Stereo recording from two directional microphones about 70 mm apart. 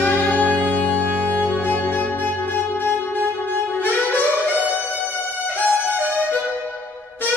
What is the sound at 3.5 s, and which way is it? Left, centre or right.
Saxophone, left.